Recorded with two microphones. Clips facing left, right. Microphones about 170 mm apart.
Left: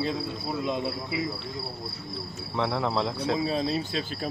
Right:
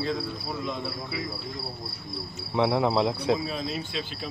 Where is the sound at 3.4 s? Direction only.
35° left (ahead or behind).